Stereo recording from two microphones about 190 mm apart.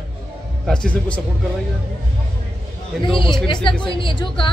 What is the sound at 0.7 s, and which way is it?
Speech, 5° left (ahead or behind).